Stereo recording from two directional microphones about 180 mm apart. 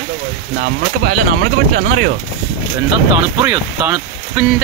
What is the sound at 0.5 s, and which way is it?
Speech, 55° right (ahead or behind).